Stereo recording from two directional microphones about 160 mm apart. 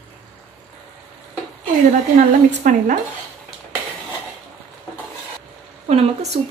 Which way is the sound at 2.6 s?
55° right (ahead or behind).